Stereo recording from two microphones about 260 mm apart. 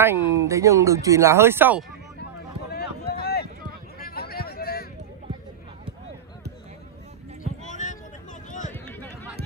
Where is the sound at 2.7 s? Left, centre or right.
Left.